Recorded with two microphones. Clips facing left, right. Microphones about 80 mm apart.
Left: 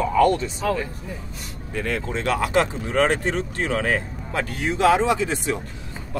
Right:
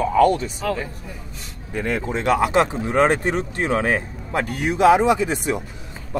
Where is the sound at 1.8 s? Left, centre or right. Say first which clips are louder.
Right 2 dB; right.